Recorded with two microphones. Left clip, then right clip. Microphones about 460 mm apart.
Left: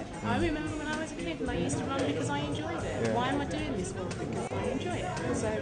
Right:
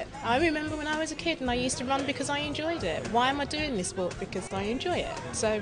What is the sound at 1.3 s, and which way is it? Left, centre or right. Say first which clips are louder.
Speech: right 3 dB; right.